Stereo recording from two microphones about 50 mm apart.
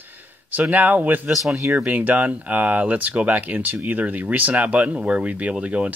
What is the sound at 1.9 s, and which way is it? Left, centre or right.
Speech, right.